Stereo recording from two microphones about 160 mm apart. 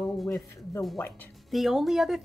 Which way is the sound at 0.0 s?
Centre (ahead or behind).